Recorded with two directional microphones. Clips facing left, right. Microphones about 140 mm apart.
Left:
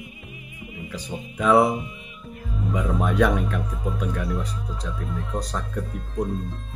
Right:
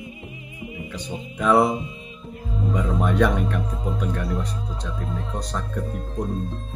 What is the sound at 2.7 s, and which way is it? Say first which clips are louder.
Speech: right 1 dB; 5° left (ahead or behind).